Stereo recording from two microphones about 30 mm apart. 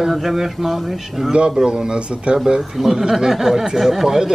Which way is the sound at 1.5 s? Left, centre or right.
Right.